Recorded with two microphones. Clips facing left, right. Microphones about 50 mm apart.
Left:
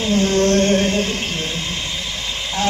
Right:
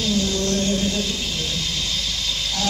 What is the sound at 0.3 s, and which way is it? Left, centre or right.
Music, left.